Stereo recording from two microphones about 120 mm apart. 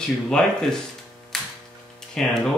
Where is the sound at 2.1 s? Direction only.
5° left (ahead or behind).